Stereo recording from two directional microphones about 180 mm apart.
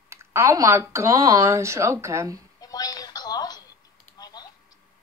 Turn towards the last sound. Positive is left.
turn(degrees=20)  # may be behind; listen again after turning